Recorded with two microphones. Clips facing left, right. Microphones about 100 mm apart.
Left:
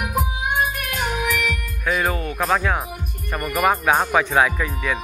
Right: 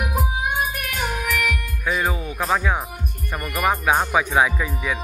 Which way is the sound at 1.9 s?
10° right (ahead or behind).